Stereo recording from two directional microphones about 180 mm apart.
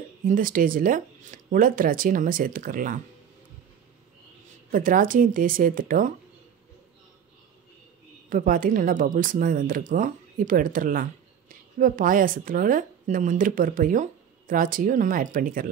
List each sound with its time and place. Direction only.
0.2 s speech: 50° right (ahead or behind)
4.6 s speech: 50° right (ahead or behind)
8.3 s speech: 50° right (ahead or behind)